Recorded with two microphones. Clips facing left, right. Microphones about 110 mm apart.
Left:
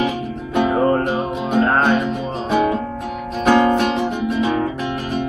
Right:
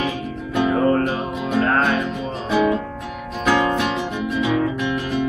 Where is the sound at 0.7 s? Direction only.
30° left (ahead or behind).